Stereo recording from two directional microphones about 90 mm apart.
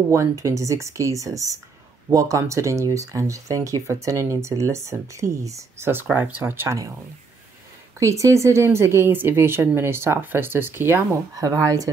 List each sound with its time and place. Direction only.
0.1 s speech: 35° right (ahead or behind)
6.1 s speech: 20° right (ahead or behind)
8.0 s speech: 35° right (ahead or behind)
11.3 s speech: 40° right (ahead or behind)